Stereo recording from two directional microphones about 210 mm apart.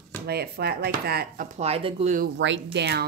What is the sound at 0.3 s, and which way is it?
Speech, 50° right (ahead or behind).